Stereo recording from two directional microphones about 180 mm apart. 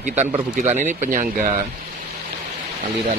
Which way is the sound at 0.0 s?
40° right (ahead or behind).